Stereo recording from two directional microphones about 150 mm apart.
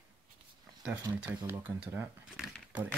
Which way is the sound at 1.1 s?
30° right (ahead or behind).